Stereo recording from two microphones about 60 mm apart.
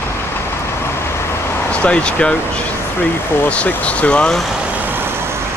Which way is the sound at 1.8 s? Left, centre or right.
Centre.